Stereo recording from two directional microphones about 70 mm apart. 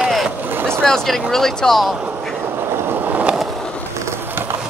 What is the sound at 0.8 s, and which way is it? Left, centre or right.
Speech, centre.